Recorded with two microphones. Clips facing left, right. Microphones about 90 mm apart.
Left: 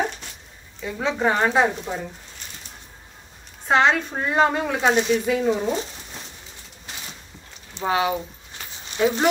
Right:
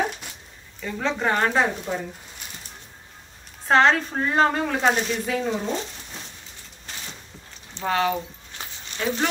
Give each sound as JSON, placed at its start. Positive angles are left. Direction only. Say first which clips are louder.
{"t": 0.8, "sound": "speech", "louder": "left 2 dB", "side_deg": 5}
{"t": 3.6, "sound": "a woman's voice", "louder": "right 1 dB", "side_deg": 5}
{"t": 7.7, "sound": "speech", "louder": "left 1 dB", "side_deg": 15}